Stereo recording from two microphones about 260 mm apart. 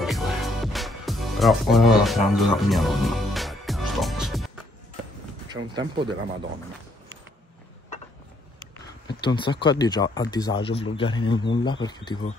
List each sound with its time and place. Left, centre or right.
0.0 s music: centre
5.5 s speech: centre
9.2 s speech: centre